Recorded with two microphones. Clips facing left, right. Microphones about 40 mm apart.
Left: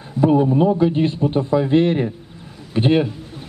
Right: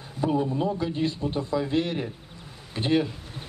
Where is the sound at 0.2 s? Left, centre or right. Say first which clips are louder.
Left 10 dB; left.